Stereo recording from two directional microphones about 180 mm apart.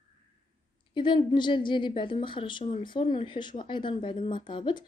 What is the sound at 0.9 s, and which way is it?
Speech, 25° left (ahead or behind).